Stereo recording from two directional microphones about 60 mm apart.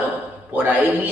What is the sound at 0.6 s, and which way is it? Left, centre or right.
Speech, right.